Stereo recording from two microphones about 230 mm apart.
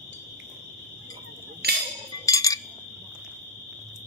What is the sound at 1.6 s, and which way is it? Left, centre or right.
Music, right.